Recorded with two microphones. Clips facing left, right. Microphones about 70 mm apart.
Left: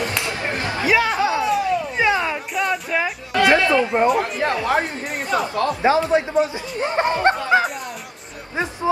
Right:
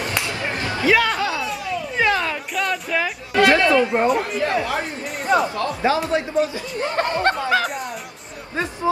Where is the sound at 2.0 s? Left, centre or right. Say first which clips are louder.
Right 2 dB; centre.